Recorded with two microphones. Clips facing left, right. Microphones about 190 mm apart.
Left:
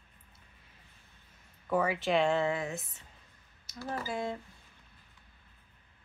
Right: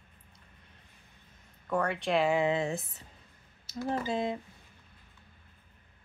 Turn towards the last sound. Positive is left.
turn(degrees=-20)  # may be behind; listen again after turning